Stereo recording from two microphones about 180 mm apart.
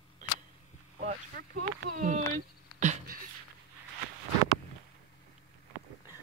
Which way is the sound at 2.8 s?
45° right (ahead or behind).